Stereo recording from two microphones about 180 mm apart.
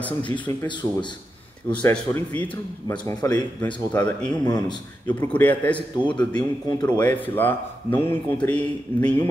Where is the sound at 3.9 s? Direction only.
5° left (ahead or behind).